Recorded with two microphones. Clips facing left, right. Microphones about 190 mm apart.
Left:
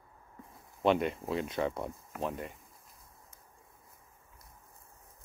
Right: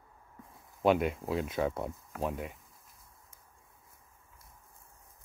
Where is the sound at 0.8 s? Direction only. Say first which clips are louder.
Right 1 dB; 5° right (ahead or behind).